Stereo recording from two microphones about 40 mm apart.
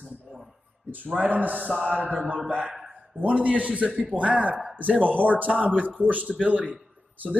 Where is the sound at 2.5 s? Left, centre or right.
Right.